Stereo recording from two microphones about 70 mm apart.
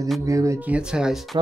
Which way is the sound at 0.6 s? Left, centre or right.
Centre.